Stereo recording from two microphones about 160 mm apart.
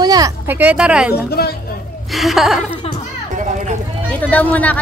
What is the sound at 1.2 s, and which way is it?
Speech, 80° left.